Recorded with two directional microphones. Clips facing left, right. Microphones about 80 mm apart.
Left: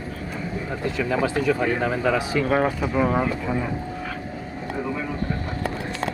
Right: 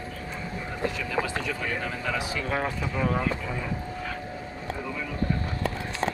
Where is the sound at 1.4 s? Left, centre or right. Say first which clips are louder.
Left 9 dB; left.